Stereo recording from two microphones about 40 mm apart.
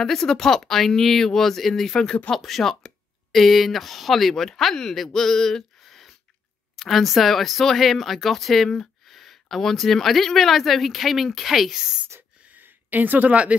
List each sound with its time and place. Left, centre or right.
0.0 s speech: centre
2.3 s speech: centre
12.5 s a sound: right